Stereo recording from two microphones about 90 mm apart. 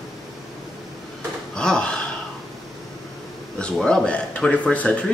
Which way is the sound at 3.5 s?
10° left (ahead or behind).